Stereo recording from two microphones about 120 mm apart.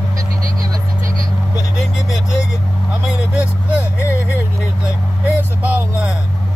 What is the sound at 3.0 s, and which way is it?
Vehicle, 10° right (ahead or behind).